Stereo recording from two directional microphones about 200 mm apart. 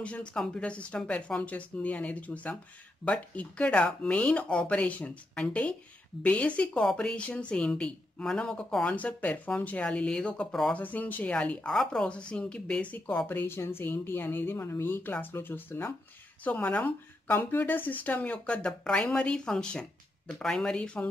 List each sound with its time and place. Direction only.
0.0 s a woman's voice: 5° left (ahead or behind)